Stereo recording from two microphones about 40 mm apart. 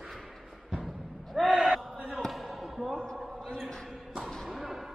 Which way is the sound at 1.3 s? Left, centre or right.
Centre.